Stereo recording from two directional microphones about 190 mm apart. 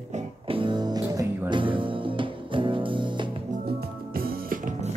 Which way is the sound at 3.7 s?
50° right (ahead or behind).